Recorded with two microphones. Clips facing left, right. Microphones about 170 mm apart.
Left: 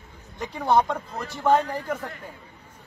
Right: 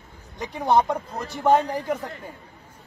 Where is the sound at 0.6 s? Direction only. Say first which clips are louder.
Right 1 dB; 15° right (ahead or behind).